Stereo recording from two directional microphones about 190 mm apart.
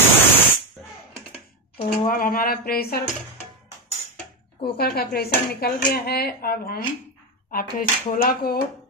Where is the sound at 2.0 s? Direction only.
50° left (ahead or behind).